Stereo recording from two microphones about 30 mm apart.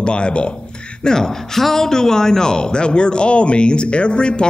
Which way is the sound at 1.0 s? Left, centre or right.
Centre.